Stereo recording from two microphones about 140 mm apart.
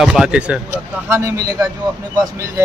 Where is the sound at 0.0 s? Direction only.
5° right (ahead or behind).